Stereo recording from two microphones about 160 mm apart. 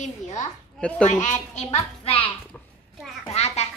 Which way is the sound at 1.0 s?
50° left (ahead or behind).